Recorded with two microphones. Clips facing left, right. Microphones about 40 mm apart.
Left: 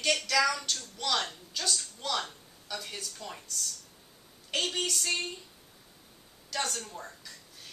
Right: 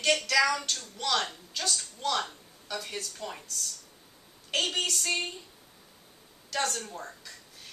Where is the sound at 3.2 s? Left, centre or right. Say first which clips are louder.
Right 4 dB; centre.